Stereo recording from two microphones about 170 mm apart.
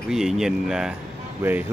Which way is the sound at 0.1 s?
5° right (ahead or behind).